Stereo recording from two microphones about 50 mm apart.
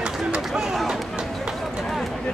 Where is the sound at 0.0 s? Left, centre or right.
Centre.